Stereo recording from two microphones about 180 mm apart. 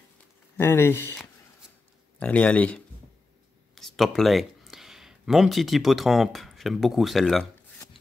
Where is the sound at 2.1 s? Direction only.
5° left (ahead or behind).